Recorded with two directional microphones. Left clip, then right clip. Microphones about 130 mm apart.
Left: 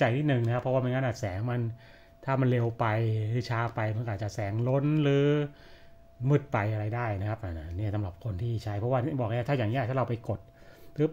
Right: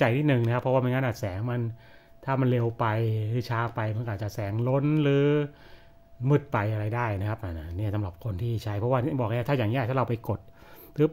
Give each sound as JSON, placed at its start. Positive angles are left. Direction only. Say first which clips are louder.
{"t": 0.0, "sound": "speech", "louder": "right 3 dB", "side_deg": -40}